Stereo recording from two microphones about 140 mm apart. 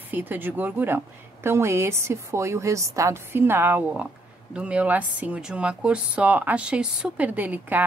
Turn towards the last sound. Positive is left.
turn(degrees=-10)  # may be behind; listen again after turning